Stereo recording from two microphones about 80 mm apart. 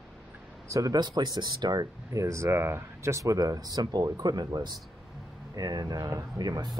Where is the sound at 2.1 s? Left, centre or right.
Right.